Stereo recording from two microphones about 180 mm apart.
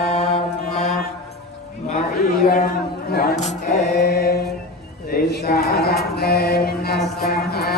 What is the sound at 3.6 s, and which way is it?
Mantra, 60° left (ahead or behind).